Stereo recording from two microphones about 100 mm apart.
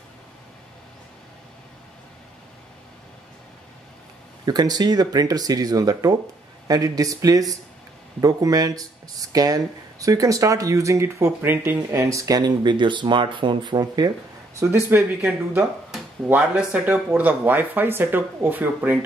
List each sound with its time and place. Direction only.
4.5 s speech: 40° right (ahead or behind)
11.5 s speech: 20° right (ahead or behind)
11.9 s speech: 30° right (ahead or behind)
14.6 s speech: 25° right (ahead or behind)
16.3 s speech: 15° right (ahead or behind)